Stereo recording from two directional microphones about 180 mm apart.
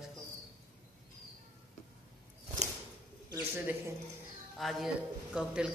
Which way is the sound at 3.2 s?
15° right (ahead or behind).